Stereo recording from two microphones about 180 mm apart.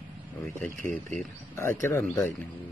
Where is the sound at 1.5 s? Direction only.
15° left (ahead or behind).